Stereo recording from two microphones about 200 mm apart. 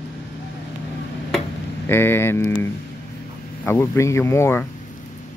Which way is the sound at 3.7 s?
15° left (ahead or behind).